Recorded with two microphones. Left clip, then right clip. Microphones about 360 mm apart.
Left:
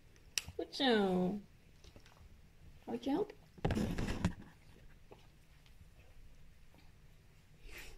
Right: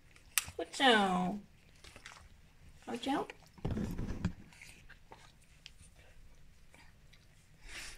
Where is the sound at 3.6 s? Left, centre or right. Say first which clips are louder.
Left 4 dB; left.